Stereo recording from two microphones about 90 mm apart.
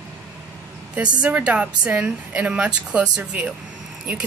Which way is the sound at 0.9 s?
15° right (ahead or behind).